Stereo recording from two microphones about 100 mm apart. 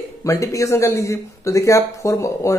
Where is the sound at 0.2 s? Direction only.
30° left (ahead or behind).